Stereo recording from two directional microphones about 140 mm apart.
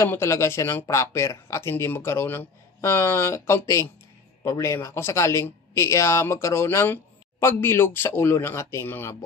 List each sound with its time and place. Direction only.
0.0 s speech: 20° left (ahead or behind)